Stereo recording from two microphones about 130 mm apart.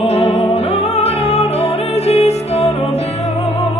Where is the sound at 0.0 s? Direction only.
55° left (ahead or behind).